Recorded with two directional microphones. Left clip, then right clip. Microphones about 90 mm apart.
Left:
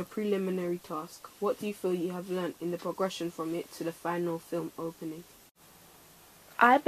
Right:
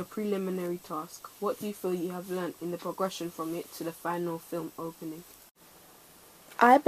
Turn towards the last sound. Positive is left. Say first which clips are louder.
# right 2 dB
turn(degrees=-30)  # may be behind; listen again after turning